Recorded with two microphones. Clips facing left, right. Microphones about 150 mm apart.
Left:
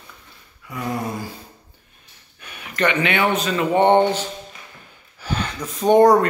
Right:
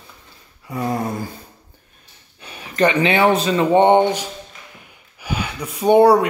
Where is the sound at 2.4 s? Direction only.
30° right (ahead or behind).